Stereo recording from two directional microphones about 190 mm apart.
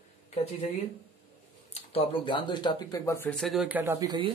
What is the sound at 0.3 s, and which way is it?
Speech, 30° left (ahead or behind).